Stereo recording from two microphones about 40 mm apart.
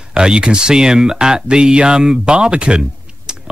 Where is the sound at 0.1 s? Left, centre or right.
Right.